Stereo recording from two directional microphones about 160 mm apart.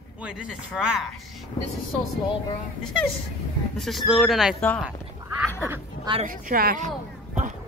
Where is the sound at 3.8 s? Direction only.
Centre (ahead or behind).